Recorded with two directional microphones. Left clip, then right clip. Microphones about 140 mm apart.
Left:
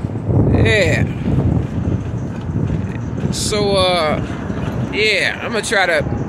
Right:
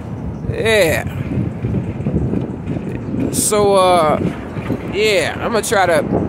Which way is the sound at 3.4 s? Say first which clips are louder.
Right 4 dB; 60° right (ahead or behind).